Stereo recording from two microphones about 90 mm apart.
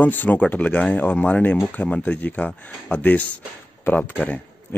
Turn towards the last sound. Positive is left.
turn(degrees=15)  # may be behind; listen again after turning